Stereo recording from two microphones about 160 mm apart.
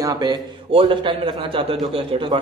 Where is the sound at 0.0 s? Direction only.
25° right (ahead or behind).